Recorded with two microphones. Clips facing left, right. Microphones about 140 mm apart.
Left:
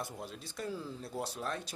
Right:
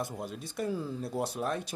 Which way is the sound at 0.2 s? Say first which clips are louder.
Right 6 dB; 55° right (ahead or behind).